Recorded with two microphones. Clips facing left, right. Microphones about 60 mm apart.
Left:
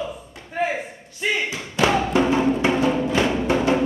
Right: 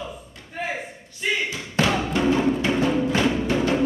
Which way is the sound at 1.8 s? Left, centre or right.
Centre.